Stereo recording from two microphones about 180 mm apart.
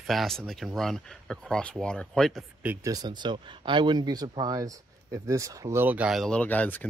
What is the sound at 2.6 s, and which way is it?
Speech, 20° right (ahead or behind).